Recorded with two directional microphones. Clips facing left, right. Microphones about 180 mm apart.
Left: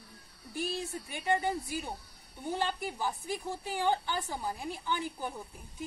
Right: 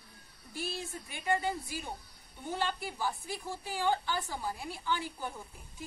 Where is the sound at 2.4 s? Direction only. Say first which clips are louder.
Left 2 dB; 15° left (ahead or behind).